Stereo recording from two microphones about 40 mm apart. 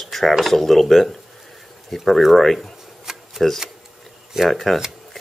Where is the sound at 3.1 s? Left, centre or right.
Centre.